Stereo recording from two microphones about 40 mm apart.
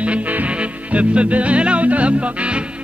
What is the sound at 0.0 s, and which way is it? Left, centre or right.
Music, right.